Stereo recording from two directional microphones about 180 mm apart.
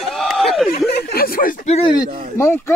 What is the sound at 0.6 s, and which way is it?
Speech, 60° left (ahead or behind).